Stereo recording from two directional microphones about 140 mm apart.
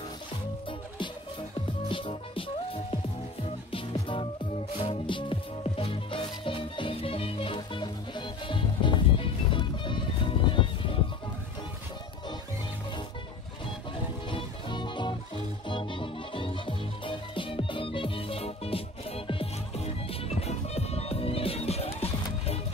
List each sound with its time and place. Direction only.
0.7 s music: 35° left (ahead or behind)
3.7 s music: 40° left (ahead or behind)
14.3 s music: 35° left (ahead or behind)